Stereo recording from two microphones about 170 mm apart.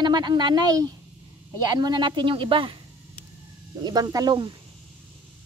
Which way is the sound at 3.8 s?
25° right (ahead or behind).